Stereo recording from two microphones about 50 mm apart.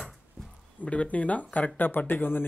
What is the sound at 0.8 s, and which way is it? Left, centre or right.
Speech, left.